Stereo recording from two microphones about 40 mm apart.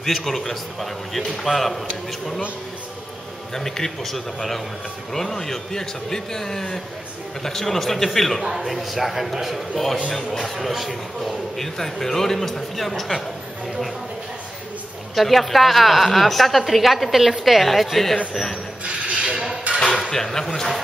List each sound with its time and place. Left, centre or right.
0.0 s a woman's voice: centre
3.5 s a man's voice: centre
8.5 s a woman's voice: centre
10.0 s a man's voice: centre
15.1 s a woman's voice: centre
18.9 s mechanisms: right
19.8 s dishes: centre
20.1 s a man's voice: centre